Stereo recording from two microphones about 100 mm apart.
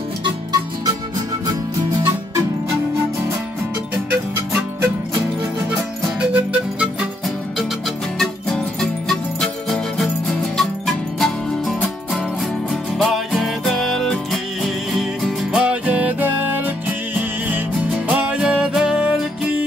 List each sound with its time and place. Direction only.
0.2 s music: 45° right (ahead or behind)
4.1 s music: 15° right (ahead or behind)
6.1 s music: 10° right (ahead or behind)
8.2 s music: 5° left (ahead or behind)